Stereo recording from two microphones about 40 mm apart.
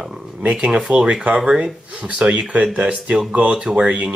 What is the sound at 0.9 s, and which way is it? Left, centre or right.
Speech, right.